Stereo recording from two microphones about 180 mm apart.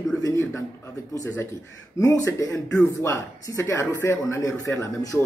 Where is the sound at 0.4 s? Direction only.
15° left (ahead or behind).